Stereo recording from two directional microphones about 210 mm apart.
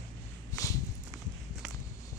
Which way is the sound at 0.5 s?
15° left (ahead or behind).